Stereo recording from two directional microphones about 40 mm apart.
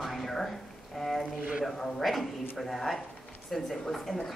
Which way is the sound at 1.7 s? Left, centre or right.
Centre.